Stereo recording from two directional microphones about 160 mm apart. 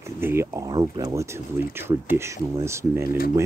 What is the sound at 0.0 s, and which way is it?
Speech, 15° right (ahead or behind).